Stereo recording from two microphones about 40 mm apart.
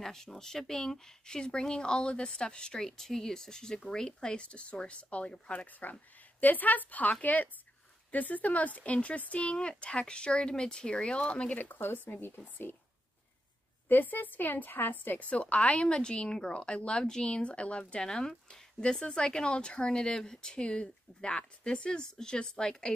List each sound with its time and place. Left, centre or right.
0.0 s speech: centre
2.9 s speech: centre; by 5.7 s left
5.7 s a woman's voice: left
11.5 s speech: left
11.8 s speech: left
13.8 s a woman's voice: left
15.1 s speech: left
18.1 s speech: centre